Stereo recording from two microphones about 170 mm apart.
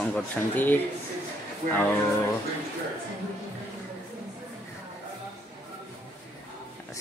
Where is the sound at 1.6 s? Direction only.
50° right (ahead or behind).